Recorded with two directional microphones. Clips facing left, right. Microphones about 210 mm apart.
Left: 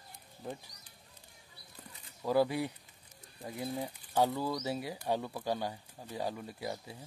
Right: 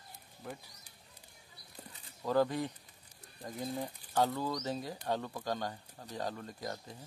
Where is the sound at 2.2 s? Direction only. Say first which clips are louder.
Left 1 dB; 10° left (ahead or behind).